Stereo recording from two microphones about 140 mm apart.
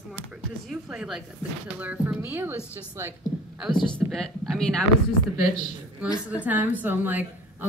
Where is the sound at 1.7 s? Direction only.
10° right (ahead or behind).